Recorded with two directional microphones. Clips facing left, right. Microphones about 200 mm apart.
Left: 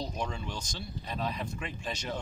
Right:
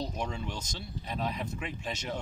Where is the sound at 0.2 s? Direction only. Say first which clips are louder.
Even; 20° right (ahead or behind).